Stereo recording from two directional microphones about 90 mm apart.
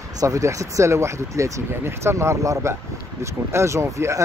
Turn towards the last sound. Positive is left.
turn(degrees=-35)  # may be behind; listen again after turning